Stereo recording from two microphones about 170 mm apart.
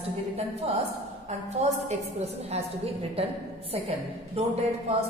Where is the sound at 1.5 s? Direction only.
40° right (ahead or behind).